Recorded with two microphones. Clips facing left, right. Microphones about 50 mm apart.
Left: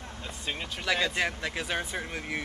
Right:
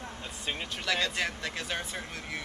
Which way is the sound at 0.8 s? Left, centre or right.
Centre.